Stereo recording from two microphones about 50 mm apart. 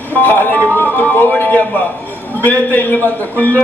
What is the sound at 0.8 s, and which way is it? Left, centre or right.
Music, left.